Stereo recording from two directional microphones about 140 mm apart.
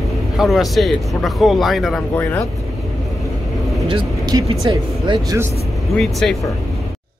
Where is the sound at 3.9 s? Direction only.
35° right (ahead or behind).